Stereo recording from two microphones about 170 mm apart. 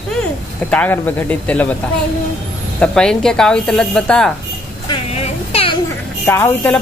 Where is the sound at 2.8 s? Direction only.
5° left (ahead or behind).